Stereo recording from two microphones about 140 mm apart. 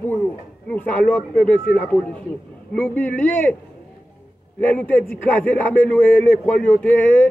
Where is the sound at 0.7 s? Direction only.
5° left (ahead or behind).